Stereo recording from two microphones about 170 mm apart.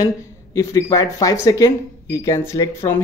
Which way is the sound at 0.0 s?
20° left (ahead or behind).